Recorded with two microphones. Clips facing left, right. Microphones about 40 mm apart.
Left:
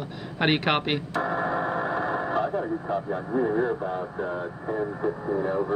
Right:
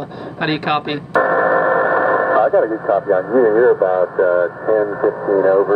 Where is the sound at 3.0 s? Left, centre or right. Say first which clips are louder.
Right 14 dB; right.